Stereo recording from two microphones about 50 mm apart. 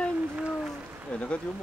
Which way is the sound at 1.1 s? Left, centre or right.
Left.